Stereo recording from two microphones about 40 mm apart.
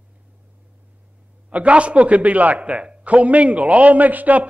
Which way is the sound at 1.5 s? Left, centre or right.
Right.